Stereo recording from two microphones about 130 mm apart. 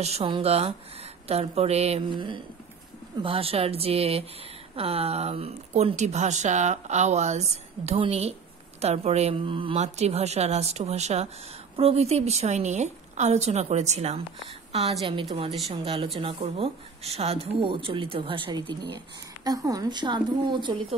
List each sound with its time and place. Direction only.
0.0 s speech: 55° right (ahead or behind)
9.8 s a woman's voice: 55° right (ahead or behind)
15.0 s speech: 45° right (ahead or behind)